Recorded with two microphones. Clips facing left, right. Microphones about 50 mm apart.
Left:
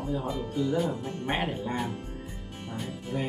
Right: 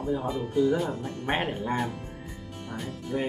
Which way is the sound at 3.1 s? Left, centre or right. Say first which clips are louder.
Right 3 dB; centre.